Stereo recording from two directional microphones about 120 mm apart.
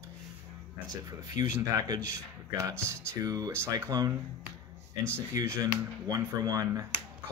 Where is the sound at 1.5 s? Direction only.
30° right (ahead or behind).